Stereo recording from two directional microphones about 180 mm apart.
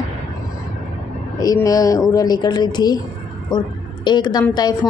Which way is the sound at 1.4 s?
20° left (ahead or behind).